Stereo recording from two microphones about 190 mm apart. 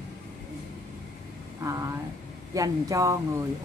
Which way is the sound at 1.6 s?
15° right (ahead or behind).